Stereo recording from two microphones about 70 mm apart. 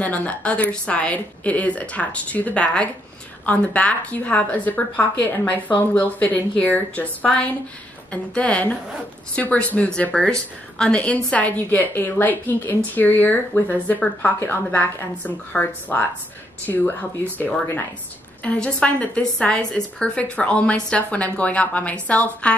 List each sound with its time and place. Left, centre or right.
0.0 s a woman's voice: left